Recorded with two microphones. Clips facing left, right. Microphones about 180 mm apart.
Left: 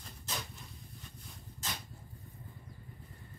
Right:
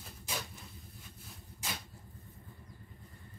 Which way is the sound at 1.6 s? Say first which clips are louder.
Right 1 dB; 10° right (ahead or behind).